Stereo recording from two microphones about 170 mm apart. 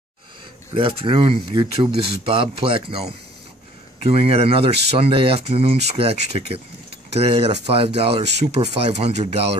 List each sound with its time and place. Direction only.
0.7 s speech: 30° right (ahead or behind)